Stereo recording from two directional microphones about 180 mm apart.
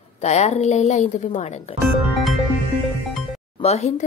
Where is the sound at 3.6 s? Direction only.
35° left (ahead or behind).